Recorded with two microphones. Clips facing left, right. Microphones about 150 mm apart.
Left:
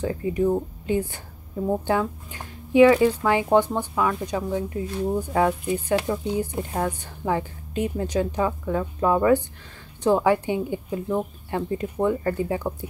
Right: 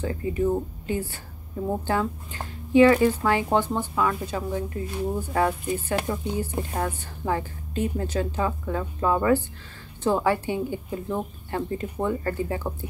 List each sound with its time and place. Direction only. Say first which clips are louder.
0.0 s a woman's voice: left 2 dB; 15° left (ahead or behind)
3.9 s speech: left 1 dB; 5° left (ahead or behind)
4.3 s a woman's voice: left 3 dB; 15° left (ahead or behind)